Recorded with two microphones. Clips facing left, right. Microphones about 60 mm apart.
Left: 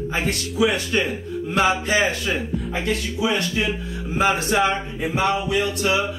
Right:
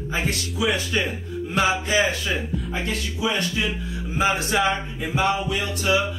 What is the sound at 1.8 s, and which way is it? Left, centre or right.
Music, left.